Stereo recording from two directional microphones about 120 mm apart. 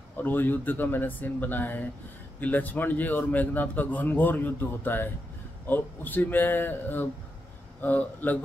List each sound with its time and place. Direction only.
0.2 s a man's voice: 15° left (ahead or behind)